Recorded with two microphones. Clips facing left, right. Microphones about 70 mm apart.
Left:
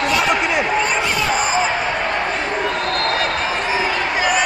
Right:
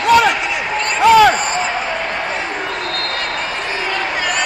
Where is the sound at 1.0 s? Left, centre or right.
Right.